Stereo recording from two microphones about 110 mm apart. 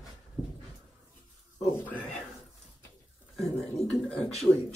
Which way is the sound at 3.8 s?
85° left.